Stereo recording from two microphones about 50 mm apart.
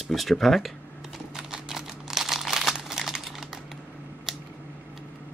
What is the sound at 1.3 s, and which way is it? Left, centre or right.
Crumpling, centre.